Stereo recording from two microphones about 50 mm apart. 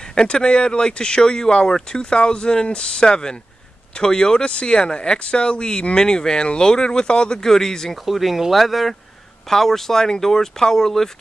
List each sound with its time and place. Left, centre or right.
0.1 s speech: centre
8.0 s speech: centre